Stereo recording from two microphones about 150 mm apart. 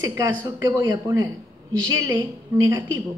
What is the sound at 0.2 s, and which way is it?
A woman's voice, 25° right (ahead or behind).